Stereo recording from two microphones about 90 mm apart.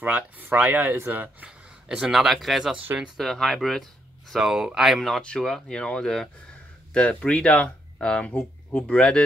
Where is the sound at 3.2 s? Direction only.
5° left (ahead or behind).